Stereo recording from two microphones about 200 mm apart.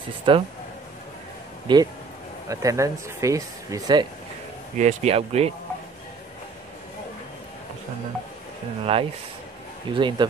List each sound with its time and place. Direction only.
0.3 s speech: 25° right (ahead or behind)
1.7 s speech: 25° right (ahead or behind)
4.7 s speech: 35° right (ahead or behind)
8.9 s speech: 30° right (ahead or behind)